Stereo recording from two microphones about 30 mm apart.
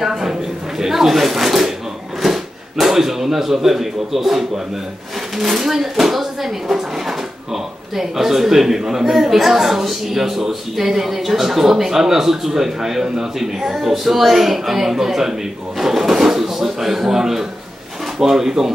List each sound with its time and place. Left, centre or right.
0.0 s a man's voice: centre